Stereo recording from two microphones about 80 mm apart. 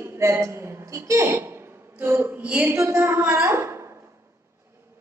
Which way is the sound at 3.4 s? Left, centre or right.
Right.